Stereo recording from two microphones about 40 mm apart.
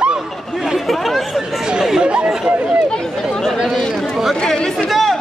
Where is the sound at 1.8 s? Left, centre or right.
Centre.